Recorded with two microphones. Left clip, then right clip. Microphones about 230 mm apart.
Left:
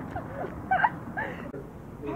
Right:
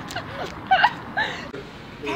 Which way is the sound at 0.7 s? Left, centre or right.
Right.